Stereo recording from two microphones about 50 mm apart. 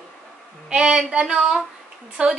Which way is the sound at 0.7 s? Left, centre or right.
Centre.